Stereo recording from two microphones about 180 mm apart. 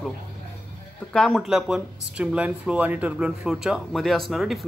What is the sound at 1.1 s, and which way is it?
Speech, 5° left (ahead or behind).